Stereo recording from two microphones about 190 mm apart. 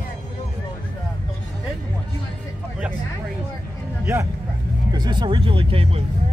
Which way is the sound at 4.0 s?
15° right (ahead or behind).